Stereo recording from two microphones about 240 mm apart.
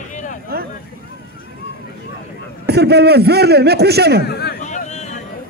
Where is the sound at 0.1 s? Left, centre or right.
Left.